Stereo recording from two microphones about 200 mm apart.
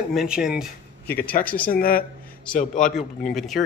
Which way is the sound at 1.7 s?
45° left (ahead or behind).